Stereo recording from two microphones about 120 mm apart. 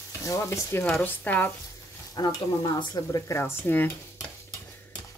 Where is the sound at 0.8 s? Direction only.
15° left (ahead or behind).